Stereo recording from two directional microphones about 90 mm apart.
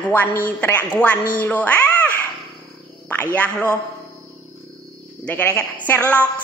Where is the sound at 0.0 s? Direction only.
20° left (ahead or behind).